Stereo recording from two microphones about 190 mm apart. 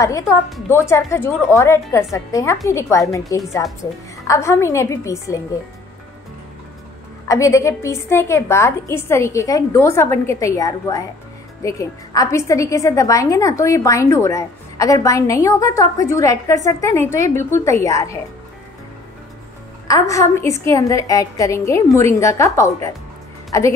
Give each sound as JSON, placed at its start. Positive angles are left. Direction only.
{"t": 0.0, "sound": "a woman's voice", "side_deg": 15}
{"t": 7.2, "sound": "a woman's voice", "side_deg": 15}
{"t": 19.9, "sound": "a woman's voice", "side_deg": 15}